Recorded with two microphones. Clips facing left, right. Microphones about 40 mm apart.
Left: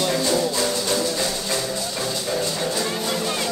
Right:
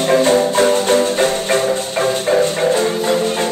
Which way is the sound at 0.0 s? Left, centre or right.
Right.